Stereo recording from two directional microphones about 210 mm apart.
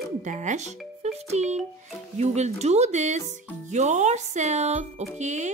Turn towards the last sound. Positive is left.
turn(degrees=-35)  # may be behind; listen again after turning